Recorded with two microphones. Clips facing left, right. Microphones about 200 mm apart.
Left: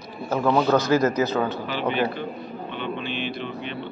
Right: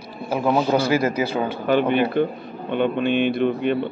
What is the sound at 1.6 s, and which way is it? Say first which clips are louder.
Speech: right 6 dB; 55° right (ahead or behind).